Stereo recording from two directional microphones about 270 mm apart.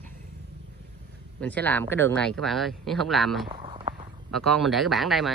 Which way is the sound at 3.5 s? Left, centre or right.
Right.